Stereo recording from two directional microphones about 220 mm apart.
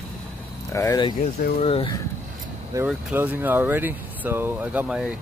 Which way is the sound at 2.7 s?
5° right (ahead or behind).